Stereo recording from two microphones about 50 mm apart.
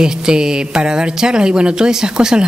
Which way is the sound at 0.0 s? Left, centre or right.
Centre.